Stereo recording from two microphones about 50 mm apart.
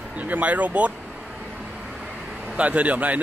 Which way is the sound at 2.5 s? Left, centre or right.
Right.